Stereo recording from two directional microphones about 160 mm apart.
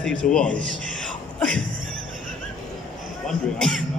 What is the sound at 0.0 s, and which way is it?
A man's voice, 5° left (ahead or behind).